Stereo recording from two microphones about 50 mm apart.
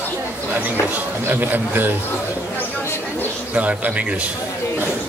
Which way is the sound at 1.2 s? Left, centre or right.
Right.